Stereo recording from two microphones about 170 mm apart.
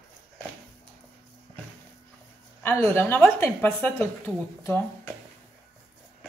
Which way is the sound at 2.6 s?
15° left (ahead or behind).